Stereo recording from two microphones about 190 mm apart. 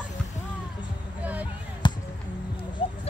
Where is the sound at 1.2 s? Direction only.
10° right (ahead or behind).